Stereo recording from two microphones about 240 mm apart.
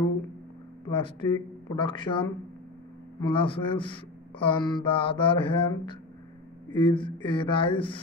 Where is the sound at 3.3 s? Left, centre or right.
Left.